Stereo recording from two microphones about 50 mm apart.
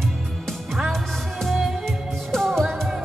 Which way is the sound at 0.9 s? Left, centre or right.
Centre.